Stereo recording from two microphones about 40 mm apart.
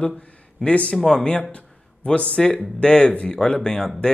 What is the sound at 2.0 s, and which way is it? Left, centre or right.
Speech, left.